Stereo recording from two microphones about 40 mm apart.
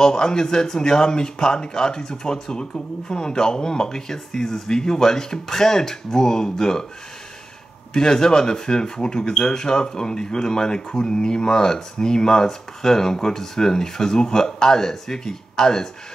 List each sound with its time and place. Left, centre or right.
0.0 s speech: centre
7.9 s speech: centre